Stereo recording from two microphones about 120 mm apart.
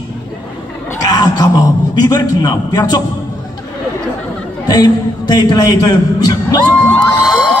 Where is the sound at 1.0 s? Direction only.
35° left (ahead or behind).